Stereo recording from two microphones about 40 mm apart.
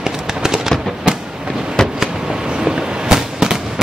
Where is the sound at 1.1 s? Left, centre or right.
Centre.